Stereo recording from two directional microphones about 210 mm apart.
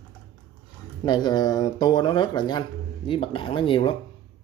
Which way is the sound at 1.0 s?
20° left (ahead or behind).